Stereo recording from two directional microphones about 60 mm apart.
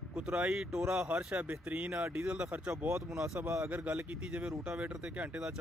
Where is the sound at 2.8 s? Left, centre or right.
Right.